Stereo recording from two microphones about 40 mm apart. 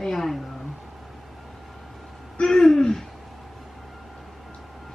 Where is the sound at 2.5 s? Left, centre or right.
Centre.